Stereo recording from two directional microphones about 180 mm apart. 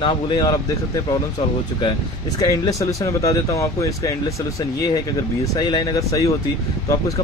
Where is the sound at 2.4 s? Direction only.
20° left (ahead or behind).